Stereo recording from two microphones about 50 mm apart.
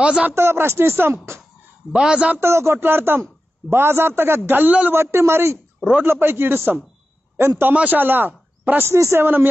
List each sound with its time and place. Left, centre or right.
0.3 s speech: right
1.9 s a man's voice: centre
2.4 s a man's voice: right
4.9 s speech: right
6.0 s a man's voice: right
7.7 s speech: right
8.9 s a man's voice: right
9.2 s a man's voice: right